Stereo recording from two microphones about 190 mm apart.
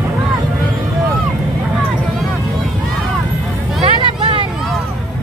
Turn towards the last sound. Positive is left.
turn(degrees=-25)  # may be behind; listen again after turning